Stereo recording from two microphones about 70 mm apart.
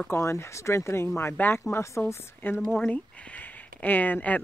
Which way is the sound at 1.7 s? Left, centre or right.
Left.